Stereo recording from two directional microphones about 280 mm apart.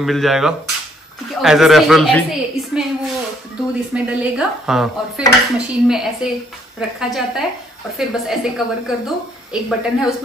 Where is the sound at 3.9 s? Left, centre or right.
Centre.